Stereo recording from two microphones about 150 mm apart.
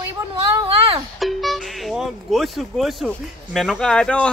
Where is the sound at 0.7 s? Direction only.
40° right (ahead or behind).